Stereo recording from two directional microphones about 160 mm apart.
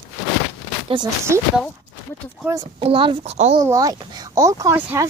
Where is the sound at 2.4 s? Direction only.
20° right (ahead or behind).